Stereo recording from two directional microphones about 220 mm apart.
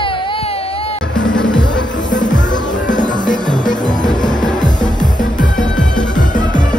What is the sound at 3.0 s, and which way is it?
Music, 20° left (ahead or behind).